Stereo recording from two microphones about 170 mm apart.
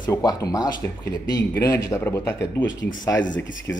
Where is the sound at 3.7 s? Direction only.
10° left (ahead or behind).